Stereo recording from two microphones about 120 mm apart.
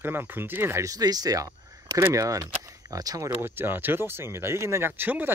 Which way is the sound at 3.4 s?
20° right (ahead or behind).